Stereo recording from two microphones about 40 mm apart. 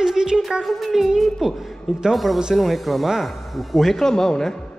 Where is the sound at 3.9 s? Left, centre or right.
Centre.